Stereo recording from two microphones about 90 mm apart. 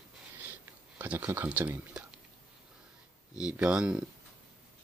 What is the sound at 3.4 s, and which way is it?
Speech, 15° right (ahead or behind).